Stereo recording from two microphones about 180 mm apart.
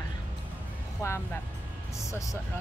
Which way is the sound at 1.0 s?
15° left (ahead or behind).